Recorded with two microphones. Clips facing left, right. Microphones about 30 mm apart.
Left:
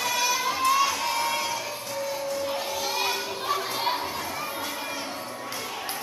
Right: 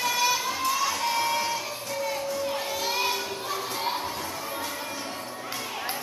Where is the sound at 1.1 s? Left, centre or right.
Centre.